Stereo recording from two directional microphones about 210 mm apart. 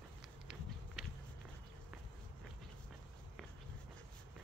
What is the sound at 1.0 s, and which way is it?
Walk, centre (ahead or behind).